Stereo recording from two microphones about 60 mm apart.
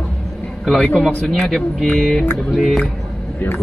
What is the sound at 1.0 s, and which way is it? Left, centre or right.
Speech, centre.